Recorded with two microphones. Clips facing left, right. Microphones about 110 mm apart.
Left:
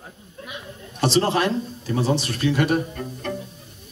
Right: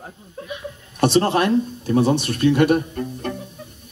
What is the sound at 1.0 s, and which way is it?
Speech, 55° right (ahead or behind).